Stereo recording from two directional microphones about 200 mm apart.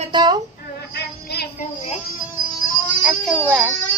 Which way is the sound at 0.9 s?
55° left (ahead or behind).